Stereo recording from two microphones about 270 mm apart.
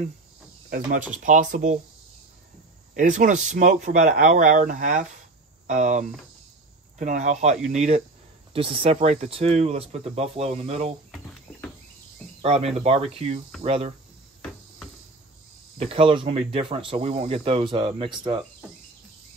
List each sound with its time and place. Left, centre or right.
0.7 s cricket: right
1.2 s speech: right
2.9 s speech: right
12.4 s speech: right
15.8 s speech: right